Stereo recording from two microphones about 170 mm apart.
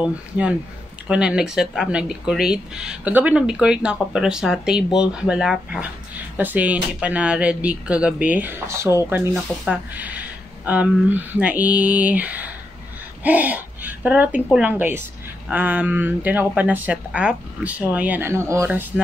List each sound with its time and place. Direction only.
0.0 s speech: 5° right (ahead or behind)